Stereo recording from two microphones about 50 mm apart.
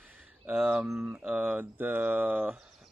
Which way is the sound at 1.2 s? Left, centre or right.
Right.